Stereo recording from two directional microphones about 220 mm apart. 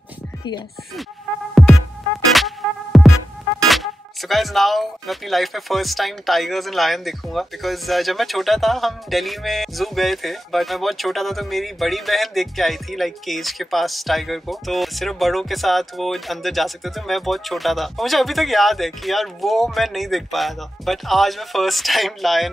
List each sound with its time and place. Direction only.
1.5 s music: centre (ahead or behind)
3.6 s speech: centre (ahead or behind)